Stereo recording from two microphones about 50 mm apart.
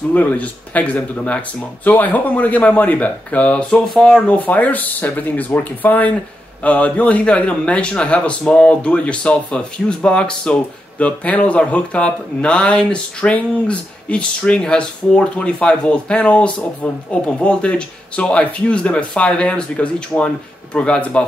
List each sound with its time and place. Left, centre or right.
0.1 s speech: left
3.8 s speech: centre
4.3 s a man's voice: left